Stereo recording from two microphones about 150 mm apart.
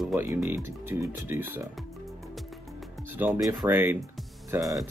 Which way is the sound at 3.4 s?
20° right (ahead or behind).